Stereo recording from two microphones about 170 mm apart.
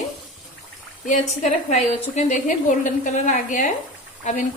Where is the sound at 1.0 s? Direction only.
40° left (ahead or behind).